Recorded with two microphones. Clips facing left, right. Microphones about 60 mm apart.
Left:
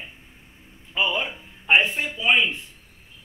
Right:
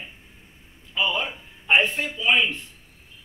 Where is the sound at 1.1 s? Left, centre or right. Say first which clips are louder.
Even; centre.